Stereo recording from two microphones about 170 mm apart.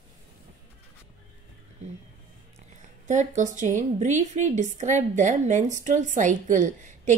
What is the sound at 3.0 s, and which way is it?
A woman's voice, 45° right (ahead or behind).